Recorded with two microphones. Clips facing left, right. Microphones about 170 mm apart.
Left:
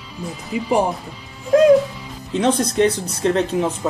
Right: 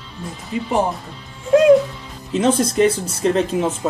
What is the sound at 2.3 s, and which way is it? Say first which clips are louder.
Speech: right 1 dB; 5° right (ahead or behind).